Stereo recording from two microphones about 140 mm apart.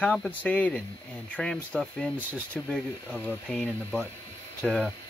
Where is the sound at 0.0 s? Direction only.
10° left (ahead or behind).